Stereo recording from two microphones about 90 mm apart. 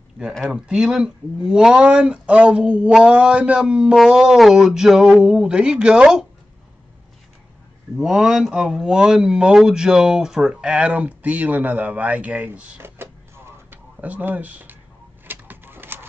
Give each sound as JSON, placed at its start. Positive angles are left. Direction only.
{"t": 0.3, "sound": "speech", "side_deg": 0}
{"t": 8.0, "sound": "speech", "side_deg": -5}
{"t": 12.8, "sound": "power windows", "side_deg": -25}
{"t": 15.2, "sound": "a sound", "side_deg": -20}